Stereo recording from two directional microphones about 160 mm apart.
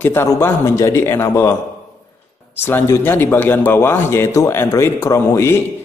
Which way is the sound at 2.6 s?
15° left (ahead or behind).